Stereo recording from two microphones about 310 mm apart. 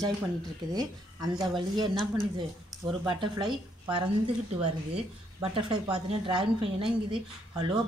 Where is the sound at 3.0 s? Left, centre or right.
Centre.